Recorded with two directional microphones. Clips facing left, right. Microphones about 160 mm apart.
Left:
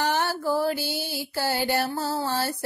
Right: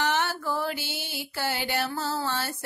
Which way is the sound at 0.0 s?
40° left (ahead or behind).